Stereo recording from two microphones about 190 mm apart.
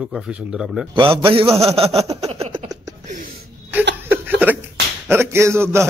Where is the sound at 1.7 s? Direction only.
30° right (ahead or behind).